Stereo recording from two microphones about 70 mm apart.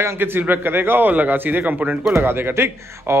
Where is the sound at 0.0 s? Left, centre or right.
Right.